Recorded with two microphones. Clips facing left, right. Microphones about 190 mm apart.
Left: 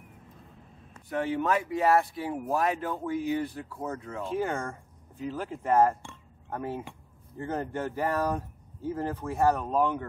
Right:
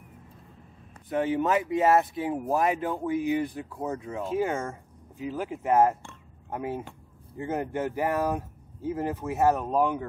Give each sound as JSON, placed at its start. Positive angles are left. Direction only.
{"t": 1.0, "sound": "speech", "side_deg": -20}